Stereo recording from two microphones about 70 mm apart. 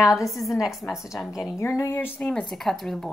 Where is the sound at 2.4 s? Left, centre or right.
Centre.